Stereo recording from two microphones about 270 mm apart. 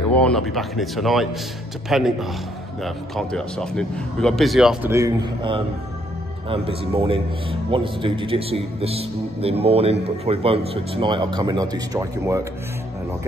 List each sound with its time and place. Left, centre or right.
0.2 s a man's voice: centre